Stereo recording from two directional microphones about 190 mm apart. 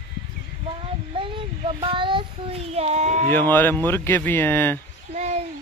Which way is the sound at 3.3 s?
10° left (ahead or behind).